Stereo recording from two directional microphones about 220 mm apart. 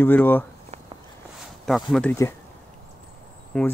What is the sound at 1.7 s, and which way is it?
Speech, centre (ahead or behind).